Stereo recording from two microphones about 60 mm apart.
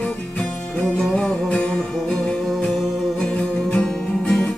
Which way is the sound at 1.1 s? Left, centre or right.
Centre.